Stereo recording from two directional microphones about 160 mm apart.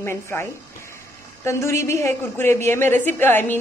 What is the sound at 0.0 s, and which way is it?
A woman's voice, 15° left (ahead or behind).